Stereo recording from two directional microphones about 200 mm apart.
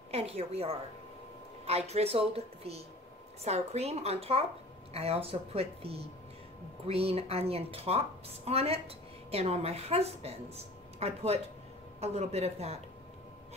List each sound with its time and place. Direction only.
0.1 s a woman's voice: 30° right (ahead or behind)